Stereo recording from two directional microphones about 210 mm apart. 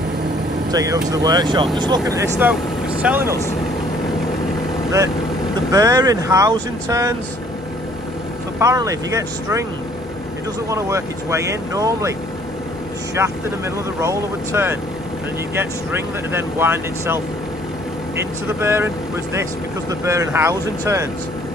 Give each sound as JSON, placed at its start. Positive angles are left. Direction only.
{"t": 0.7, "sound": "speech", "side_deg": -15}
{"t": 5.7, "sound": "speech", "side_deg": -15}
{"t": 8.5, "sound": "speech", "side_deg": -15}
{"t": 10.7, "sound": "speech", "side_deg": -15}
{"t": 13.2, "sound": "speech", "side_deg": -10}
{"t": 19.9, "sound": "speech", "side_deg": -15}